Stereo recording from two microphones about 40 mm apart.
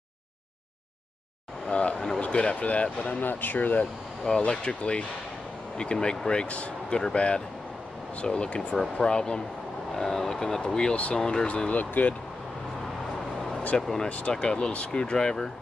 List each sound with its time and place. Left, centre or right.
1.7 s a sound: left
2.1 s speech: left
3.2 s speech: left
4.5 s speech: left
6.9 s speech: centre
8.2 s speech: left
9.9 s speech: centre; by 11.7 s left
11.7 s speech: left
13.7 s speech: centre
14.0 s speech: left
14.4 s speech: left